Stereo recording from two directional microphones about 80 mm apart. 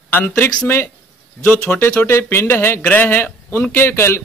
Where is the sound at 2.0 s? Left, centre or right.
Left.